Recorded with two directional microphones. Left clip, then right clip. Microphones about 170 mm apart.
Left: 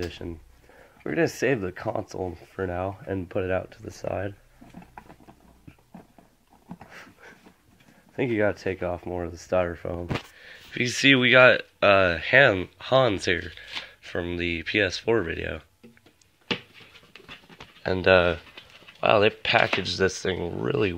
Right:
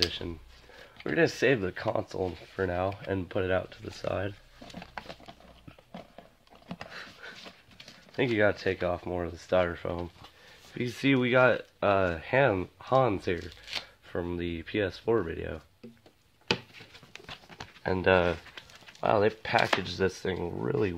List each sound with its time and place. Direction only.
1.0 s speech: centre (ahead or behind)
6.9 s a sound: centre (ahead or behind)
8.2 s speech: centre (ahead or behind)
10.7 s speech: 10° left (ahead or behind)
17.8 s speech: 15° left (ahead or behind)